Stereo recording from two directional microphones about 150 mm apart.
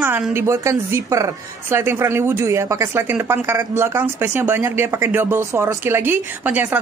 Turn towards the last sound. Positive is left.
turn(degrees=-10)  # may be behind; listen again after turning